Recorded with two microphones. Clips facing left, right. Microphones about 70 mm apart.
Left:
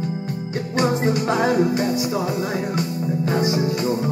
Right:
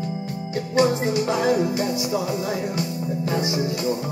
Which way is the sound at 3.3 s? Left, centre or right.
Left.